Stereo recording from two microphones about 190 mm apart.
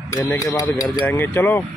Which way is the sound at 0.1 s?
15° left (ahead or behind).